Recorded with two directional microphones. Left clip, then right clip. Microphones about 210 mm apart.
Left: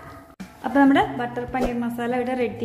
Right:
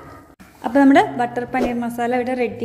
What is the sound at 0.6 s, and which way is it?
A woman's voice, 20° right (ahead or behind).